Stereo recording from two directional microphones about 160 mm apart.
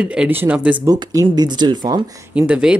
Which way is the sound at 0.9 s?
25° right (ahead or behind).